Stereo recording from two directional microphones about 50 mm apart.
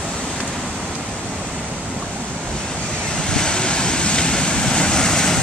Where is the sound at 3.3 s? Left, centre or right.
Centre.